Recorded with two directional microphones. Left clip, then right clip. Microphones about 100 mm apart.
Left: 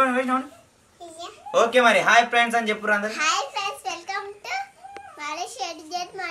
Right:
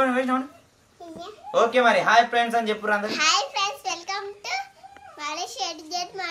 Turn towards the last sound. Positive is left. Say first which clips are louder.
# even
turn(degrees=-15)  # may be behind; listen again after turning